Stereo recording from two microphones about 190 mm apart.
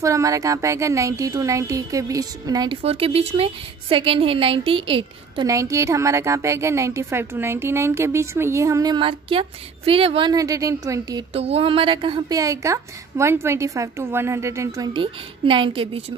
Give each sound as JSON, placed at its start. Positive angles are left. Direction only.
{"t": 0.0, "sound": "a woman's voice", "side_deg": -15}
{"t": 11.3, "sound": "a woman's voice", "side_deg": -30}